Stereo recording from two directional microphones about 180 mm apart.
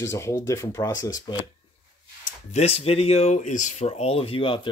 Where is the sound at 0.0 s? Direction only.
15° left (ahead or behind).